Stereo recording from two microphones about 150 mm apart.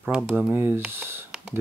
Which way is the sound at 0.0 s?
5° right (ahead or behind).